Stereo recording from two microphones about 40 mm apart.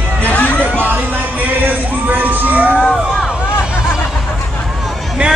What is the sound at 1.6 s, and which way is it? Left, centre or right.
Music, right.